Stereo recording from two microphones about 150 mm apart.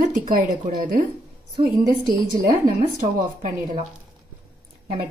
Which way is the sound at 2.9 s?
60° right (ahead or behind).